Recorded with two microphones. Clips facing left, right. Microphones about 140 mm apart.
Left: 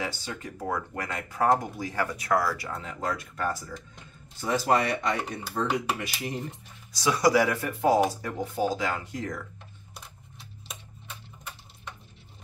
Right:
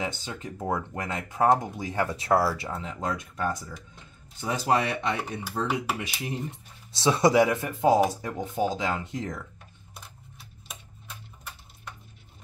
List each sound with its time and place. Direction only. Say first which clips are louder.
0.0 s speech: right 1 dB; 20° right (ahead or behind)
4.5 s speech: left 1 dB; 10° right (ahead or behind)
6.9 s speech: right 1 dB; 25° right (ahead or behind)